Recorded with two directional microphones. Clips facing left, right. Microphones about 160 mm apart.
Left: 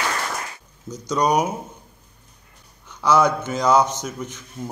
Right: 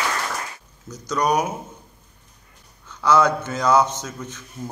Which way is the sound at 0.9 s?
20° left (ahead or behind).